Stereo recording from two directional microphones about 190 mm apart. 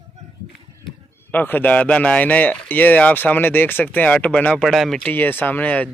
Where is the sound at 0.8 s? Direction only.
10° left (ahead or behind).